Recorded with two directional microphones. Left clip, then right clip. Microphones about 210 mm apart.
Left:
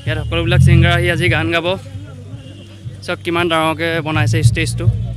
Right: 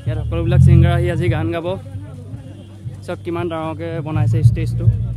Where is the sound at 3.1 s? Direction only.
Centre (ahead or behind).